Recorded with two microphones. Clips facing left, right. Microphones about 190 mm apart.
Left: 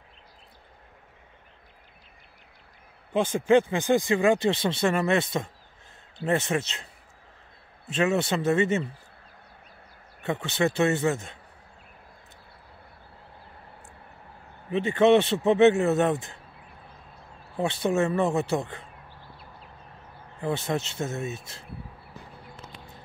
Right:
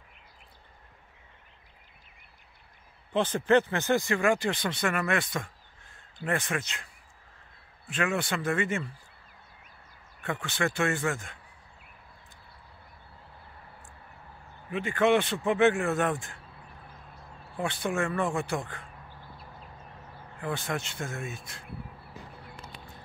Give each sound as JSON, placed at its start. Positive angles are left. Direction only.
{"t": 3.1, "sound": "speech", "side_deg": 10}
{"t": 10.2, "sound": "speech", "side_deg": 20}
{"t": 14.7, "sound": "speech", "side_deg": 25}
{"t": 17.6, "sound": "speech", "side_deg": 25}
{"t": 20.3, "sound": "speech", "side_deg": 25}